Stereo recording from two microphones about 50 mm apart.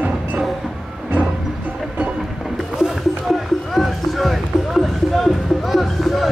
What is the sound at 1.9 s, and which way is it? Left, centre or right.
Music, right.